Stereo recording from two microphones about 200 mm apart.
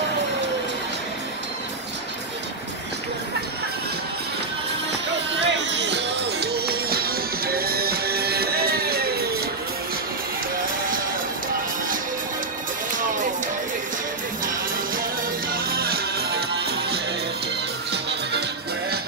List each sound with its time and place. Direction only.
5.4 s music: 60° right (ahead or behind)
15.5 s music: 50° right (ahead or behind)